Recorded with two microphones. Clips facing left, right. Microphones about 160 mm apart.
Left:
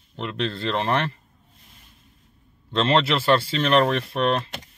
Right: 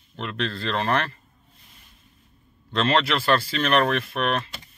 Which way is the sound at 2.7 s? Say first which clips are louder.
Left 2 dB; 25° left (ahead or behind).